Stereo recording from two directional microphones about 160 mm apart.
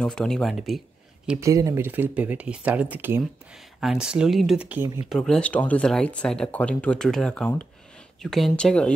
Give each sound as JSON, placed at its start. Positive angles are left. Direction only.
{"t": 0.0, "sound": "speech", "side_deg": 5}
{"t": 1.4, "sound": "speech", "side_deg": -20}
{"t": 1.9, "sound": "speech", "side_deg": -10}
{"t": 5.1, "sound": "speech", "side_deg": 5}